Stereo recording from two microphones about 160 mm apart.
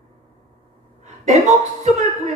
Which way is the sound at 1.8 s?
45° right (ahead or behind).